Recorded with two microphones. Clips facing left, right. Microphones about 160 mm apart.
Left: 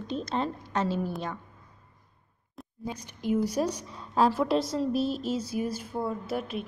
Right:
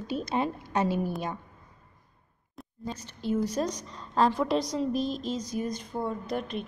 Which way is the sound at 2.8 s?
10° left (ahead or behind).